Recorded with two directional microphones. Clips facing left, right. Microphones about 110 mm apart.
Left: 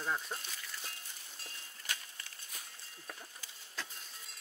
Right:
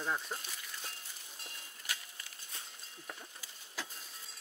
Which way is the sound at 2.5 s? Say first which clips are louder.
Right 1 dB; 25° right (ahead or behind).